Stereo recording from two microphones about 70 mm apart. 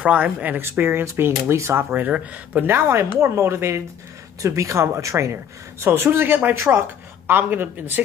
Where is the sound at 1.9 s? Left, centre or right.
Right.